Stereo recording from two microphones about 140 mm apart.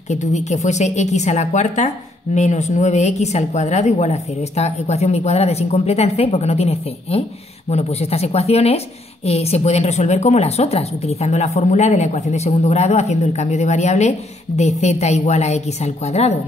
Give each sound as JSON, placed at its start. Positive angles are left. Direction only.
{"t": 0.1, "sound": "a woman's voice", "side_deg": 55}